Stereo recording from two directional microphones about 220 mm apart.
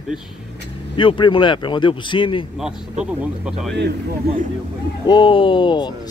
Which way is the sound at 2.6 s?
5° right (ahead or behind).